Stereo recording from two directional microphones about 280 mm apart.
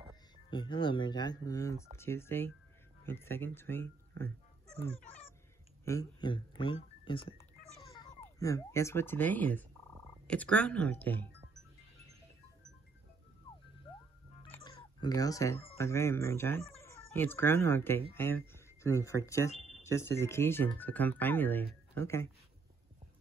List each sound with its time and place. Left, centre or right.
0.5 s speech: centre
5.9 s speech: centre
14.5 s speech: centre